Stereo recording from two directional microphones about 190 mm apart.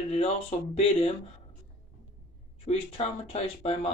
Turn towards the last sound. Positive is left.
turn(degrees=30)  # may be behind; listen again after turning